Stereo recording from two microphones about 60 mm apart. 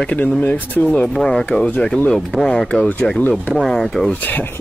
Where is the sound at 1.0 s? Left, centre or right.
Centre.